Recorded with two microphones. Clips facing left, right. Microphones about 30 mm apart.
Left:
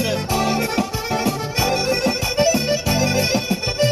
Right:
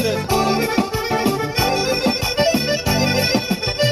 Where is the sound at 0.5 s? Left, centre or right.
Right.